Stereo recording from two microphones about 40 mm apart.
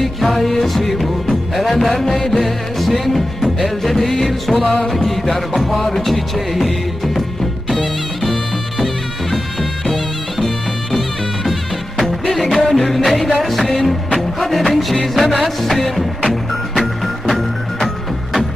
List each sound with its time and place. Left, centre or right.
0.0 s music: centre
10.4 s music: centre